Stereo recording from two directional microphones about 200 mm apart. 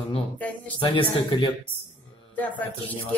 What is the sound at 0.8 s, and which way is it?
Speech, 25° left (ahead or behind).